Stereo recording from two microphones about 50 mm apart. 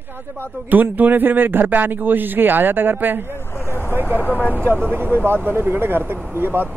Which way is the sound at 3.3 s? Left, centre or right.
Left.